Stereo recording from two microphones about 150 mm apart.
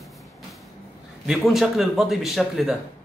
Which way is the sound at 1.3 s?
5° right (ahead or behind).